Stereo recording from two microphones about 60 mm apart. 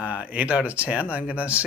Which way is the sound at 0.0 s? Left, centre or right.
Right.